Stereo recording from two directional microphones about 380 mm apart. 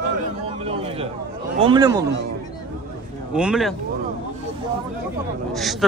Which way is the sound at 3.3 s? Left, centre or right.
Centre.